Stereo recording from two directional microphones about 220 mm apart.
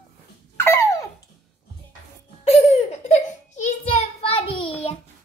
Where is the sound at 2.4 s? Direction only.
30° left (ahead or behind).